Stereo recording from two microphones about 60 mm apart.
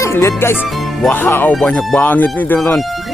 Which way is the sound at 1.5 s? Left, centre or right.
Centre.